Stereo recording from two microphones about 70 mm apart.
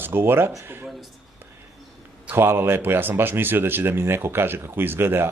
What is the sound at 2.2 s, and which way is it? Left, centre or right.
Speech, right.